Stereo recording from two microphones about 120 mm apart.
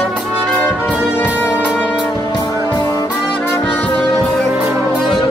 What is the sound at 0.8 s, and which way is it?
Music, 15° left (ahead or behind).